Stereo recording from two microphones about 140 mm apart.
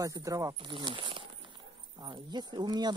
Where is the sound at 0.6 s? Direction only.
35° right (ahead or behind).